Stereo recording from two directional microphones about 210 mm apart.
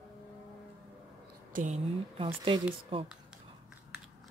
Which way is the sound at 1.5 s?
35° right (ahead or behind).